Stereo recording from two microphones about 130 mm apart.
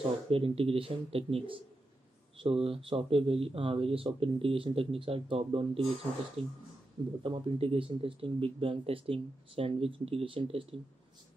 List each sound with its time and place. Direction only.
0.3 s speech: 45° right (ahead or behind)